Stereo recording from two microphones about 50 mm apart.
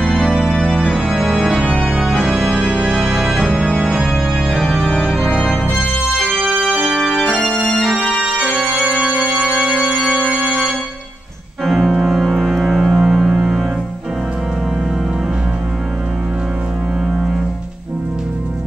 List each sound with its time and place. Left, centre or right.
0.5 s organ: centre
2.2 s music: centre
3.0 s organ: centre
5.8 s music: centre
7.4 s organ: centre
10.2 s organ: left
11.6 s organ: centre